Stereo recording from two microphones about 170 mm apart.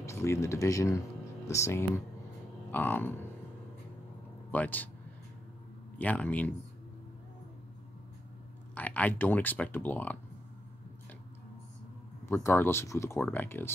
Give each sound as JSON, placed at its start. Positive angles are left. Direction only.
{"t": 0.0, "sound": "speech", "side_deg": 15}
{"t": 4.5, "sound": "speech", "side_deg": 10}
{"t": 5.9, "sound": "speech", "side_deg": 10}
{"t": 8.7, "sound": "speech", "side_deg": 10}
{"t": 12.3, "sound": "speech", "side_deg": 15}